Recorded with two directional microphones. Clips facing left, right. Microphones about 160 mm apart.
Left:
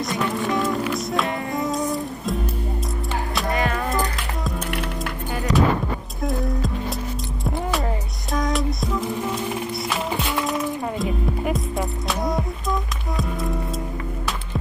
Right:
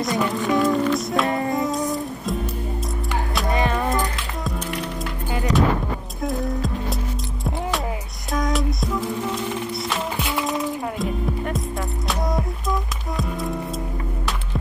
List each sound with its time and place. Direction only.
0.0 s speech: centre (ahead or behind)
1.5 s music: centre (ahead or behind)
3.4 s music: 20° right (ahead or behind)
6.2 s music: centre (ahead or behind)
8.3 s music: centre (ahead or behind)